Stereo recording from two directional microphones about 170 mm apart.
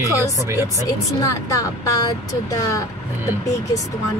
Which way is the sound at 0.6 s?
20° left (ahead or behind).